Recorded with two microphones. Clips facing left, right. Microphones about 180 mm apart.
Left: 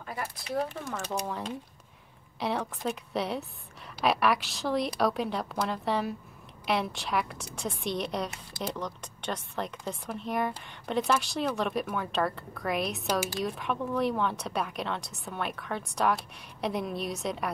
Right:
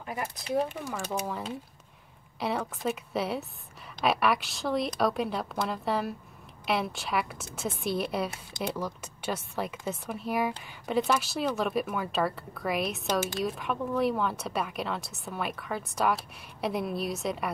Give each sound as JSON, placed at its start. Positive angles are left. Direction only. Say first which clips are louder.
{"t": 0.0, "sound": "a sound", "louder": "right 2 dB", "side_deg": -20}
{"t": 0.6, "sound": "speech", "louder": "right 2 dB", "side_deg": -15}
{"t": 0.8, "sound": "speech", "louder": "right 1 dB", "side_deg": -5}
{"t": 13.0, "sound": "speech", "louder": "right 1 dB", "side_deg": 10}
{"t": 13.4, "sound": "speech", "louder": "right 1 dB", "side_deg": 0}